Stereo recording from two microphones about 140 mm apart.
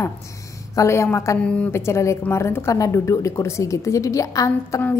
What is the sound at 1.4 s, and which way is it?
A woman's voice, 10° left (ahead or behind).